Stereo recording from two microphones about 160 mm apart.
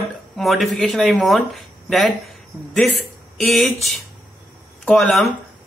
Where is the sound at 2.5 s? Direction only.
15° right (ahead or behind).